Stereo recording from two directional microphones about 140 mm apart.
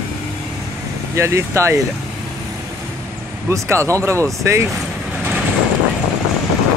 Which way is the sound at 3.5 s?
20° right (ahead or behind).